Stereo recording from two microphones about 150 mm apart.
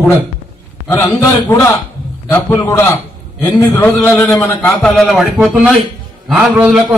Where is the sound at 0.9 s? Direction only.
20° left (ahead or behind).